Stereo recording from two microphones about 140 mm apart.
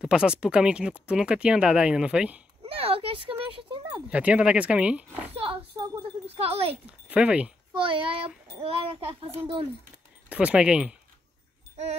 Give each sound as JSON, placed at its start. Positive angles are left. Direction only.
{"t": 0.0, "sound": "speech", "side_deg": -5}
{"t": 2.7, "sound": "speech", "side_deg": -45}
{"t": 4.1, "sound": "speech", "side_deg": -10}
{"t": 5.3, "sound": "oink", "side_deg": -40}
{"t": 6.2, "sound": "speech", "side_deg": -45}
{"t": 6.9, "sound": "speech", "side_deg": -10}
{"t": 7.7, "sound": "speech", "side_deg": -35}
{"t": 10.3, "sound": "speech", "side_deg": -10}